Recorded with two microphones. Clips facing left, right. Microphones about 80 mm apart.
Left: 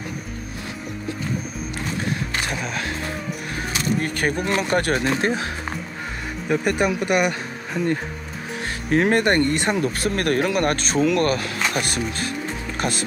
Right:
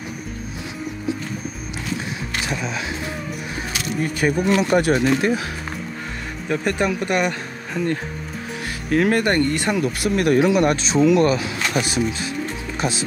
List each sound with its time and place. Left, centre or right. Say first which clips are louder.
2.4 s speech: right 1 dB; left
4.0 s speech: right 3 dB; left
6.5 s speech: left 1 dB; centre
8.9 s speech: even; left
9.8 s speech: right 2 dB; left
12.7 s music: right 1 dB; left